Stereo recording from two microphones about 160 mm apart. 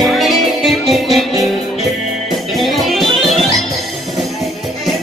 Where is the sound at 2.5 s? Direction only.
Centre (ahead or behind).